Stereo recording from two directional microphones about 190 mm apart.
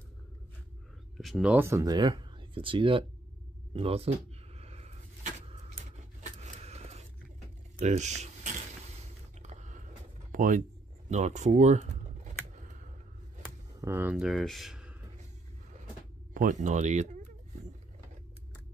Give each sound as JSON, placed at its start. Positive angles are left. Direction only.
{"t": 1.1, "sound": "speech", "side_deg": 0}
{"t": 4.6, "sound": "a sound", "side_deg": -35}
{"t": 7.8, "sound": "speech", "side_deg": -40}
{"t": 9.4, "sound": "a sound", "side_deg": -35}
{"t": 10.3, "sound": "speech", "side_deg": -45}
{"t": 13.7, "sound": "speech", "side_deg": -15}
{"t": 16.3, "sound": "speech", "side_deg": -40}